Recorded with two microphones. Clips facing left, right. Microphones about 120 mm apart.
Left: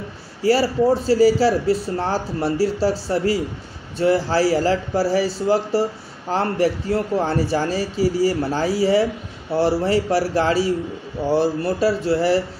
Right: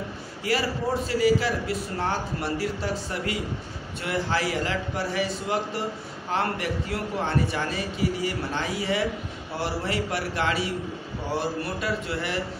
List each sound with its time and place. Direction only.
0.4 s a man's voice: 35° left (ahead or behind)